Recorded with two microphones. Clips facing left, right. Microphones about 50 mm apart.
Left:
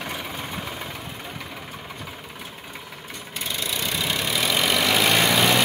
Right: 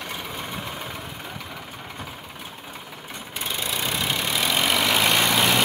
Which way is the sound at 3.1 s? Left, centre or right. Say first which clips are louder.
Right 1 dB; centre.